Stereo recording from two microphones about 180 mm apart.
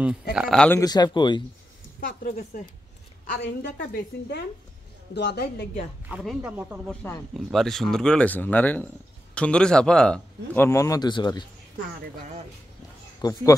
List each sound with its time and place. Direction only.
0.3 s speech: centre (ahead or behind)
0.7 s speech: 20° left (ahead or behind)
2.0 s a woman's voice: 65° left (ahead or behind)
3.3 s a woman's voice: 75° left (ahead or behind)
6.0 s speech: 5° right (ahead or behind)
6.9 s a man's voice: 5° left (ahead or behind); by 11.4 s 25° left (ahead or behind)
13.2 s speech: 20° left (ahead or behind)